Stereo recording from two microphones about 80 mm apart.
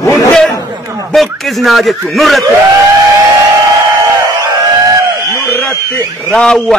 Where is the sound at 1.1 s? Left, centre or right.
Centre.